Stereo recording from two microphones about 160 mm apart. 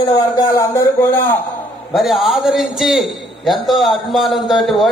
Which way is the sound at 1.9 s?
Centre (ahead or behind).